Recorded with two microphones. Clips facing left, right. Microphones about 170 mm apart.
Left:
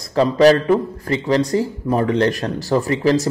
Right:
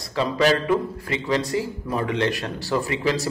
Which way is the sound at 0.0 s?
40° left (ahead or behind).